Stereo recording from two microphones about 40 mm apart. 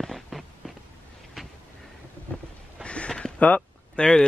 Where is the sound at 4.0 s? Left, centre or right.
Left.